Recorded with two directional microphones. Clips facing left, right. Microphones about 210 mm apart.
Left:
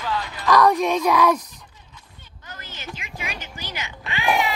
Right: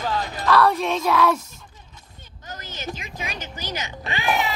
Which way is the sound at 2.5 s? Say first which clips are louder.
Right 4 dB; 40° right (ahead or behind).